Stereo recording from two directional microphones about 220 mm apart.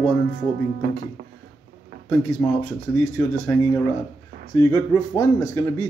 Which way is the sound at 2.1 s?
5° left (ahead or behind).